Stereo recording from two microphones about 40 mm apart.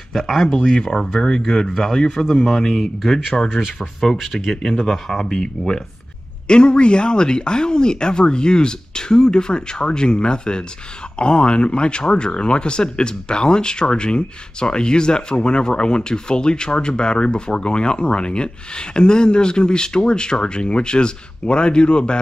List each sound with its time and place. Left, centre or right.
0.1 s speech: centre
3.4 s speech: centre
4.0 s speech: centre; by 22.2 s left